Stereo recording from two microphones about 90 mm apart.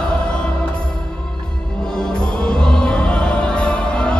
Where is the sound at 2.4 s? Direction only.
10° left (ahead or behind).